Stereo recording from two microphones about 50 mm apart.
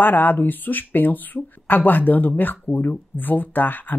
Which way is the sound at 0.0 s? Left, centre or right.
Left.